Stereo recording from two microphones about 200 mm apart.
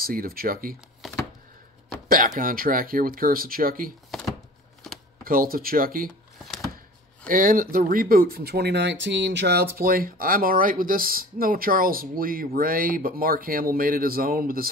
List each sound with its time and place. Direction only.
0.0 s speech: 45° right (ahead or behind)
2.0 s speech: 45° right (ahead or behind)
5.2 s speech: 45° right (ahead or behind)
6.4 s a sound: centre (ahead or behind)
7.2 s speech: 45° right (ahead or behind)